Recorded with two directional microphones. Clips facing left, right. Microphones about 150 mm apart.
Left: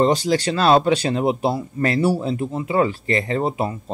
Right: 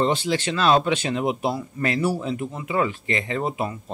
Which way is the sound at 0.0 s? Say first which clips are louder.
Left 5 dB; 40° left (ahead or behind).